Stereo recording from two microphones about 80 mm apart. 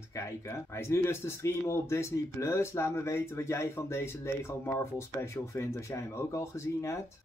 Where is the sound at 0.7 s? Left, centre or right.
Left.